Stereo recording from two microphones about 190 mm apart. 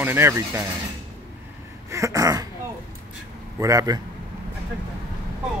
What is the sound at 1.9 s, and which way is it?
Speech, 15° right (ahead or behind).